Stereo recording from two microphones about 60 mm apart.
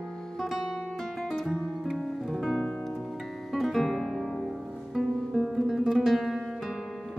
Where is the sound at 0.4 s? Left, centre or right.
Centre.